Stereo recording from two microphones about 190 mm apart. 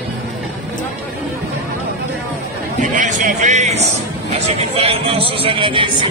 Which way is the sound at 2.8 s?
40° right (ahead or behind).